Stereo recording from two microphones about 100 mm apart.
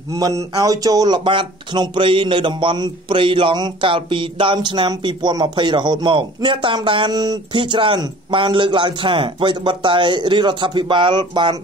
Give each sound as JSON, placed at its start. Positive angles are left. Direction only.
{"t": 0.1, "sound": "speech", "side_deg": -35}